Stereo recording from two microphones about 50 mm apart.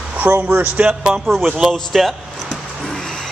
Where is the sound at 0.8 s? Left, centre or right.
Centre.